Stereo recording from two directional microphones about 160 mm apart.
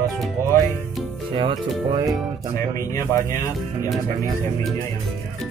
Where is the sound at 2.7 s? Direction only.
20° left (ahead or behind).